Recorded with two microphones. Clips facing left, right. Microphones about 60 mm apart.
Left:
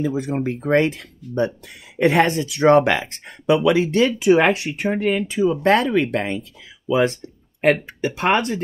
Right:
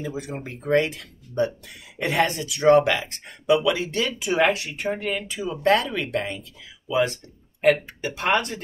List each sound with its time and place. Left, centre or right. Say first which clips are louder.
0.0 s speech: left 9 dB; left
7.7 s speech: left 5 dB; left